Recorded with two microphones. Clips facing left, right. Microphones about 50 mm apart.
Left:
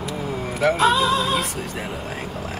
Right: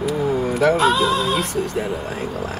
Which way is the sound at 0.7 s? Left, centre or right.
Centre.